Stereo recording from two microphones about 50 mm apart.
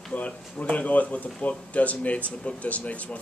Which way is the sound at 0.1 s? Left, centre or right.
Left.